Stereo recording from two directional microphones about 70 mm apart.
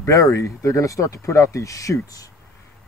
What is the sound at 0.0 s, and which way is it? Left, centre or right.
Speech, left.